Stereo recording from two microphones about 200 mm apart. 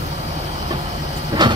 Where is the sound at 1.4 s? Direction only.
20° right (ahead or behind).